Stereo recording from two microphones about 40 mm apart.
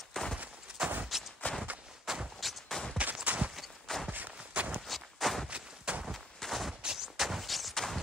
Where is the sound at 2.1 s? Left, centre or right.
Centre.